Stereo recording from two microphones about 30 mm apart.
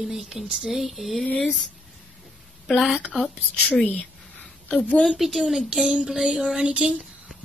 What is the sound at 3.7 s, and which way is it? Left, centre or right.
Speech, left.